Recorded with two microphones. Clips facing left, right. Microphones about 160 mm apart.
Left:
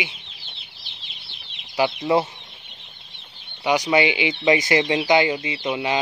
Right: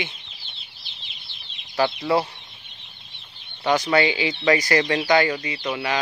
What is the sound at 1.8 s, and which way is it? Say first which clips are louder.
Speech: left 1 dB; 20° left (ahead or behind).